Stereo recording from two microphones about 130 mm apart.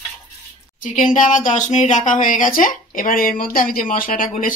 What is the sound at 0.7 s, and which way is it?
Speech, 80° left.